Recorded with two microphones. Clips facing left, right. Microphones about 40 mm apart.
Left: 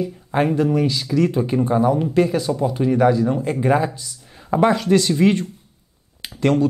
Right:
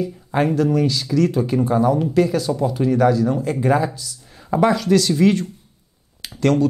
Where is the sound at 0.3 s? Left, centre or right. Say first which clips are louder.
Even; centre.